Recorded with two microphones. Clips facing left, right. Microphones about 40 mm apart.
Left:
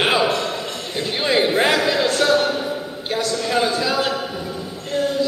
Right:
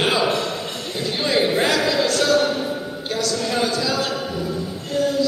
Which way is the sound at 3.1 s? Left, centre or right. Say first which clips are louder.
Left 2 dB; left.